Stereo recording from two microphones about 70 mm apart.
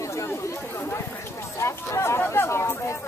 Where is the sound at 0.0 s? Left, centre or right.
Left.